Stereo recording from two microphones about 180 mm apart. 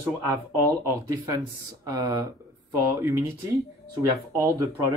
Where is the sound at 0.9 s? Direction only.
20° right (ahead or behind).